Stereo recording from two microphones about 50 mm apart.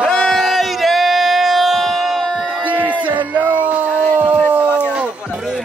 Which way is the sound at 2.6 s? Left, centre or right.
Right.